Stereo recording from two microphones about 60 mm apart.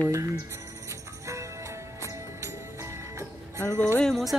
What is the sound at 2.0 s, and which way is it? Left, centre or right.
Music, right.